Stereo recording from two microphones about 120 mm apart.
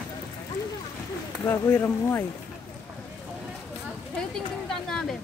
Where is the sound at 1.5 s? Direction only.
20° left (ahead or behind).